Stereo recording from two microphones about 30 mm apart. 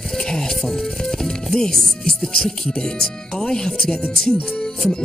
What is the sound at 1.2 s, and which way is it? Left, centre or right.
Music, left.